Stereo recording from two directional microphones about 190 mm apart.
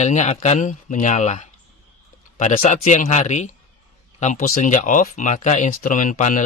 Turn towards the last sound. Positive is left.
turn(degrees=40)  # may be behind; listen again after turning